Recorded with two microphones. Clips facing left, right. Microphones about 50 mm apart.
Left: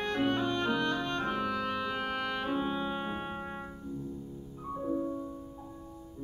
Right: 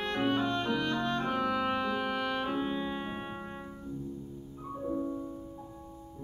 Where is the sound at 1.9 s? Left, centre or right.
Centre.